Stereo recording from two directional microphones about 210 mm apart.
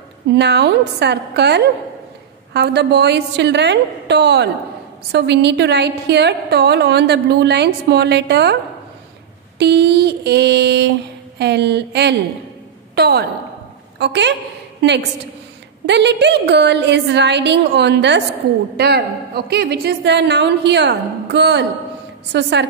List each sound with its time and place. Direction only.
0.3 s a woman's voice: 55° right (ahead or behind)
9.6 s a woman's voice: 50° right (ahead or behind)